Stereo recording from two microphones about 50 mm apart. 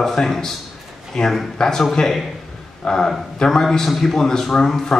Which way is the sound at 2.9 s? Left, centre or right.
Centre.